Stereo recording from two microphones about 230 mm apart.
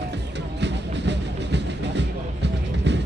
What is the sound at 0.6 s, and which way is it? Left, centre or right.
Music, right.